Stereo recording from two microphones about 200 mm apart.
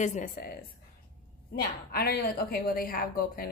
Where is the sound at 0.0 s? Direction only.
40° left (ahead or behind).